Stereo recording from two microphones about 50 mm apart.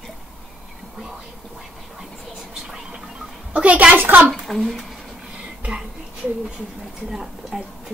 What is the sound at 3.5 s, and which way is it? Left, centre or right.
Speech, right.